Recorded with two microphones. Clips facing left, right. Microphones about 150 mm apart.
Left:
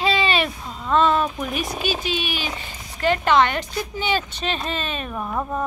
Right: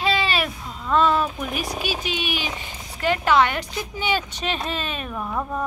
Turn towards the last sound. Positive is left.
turn(degrees=10)  # may be behind; listen again after turning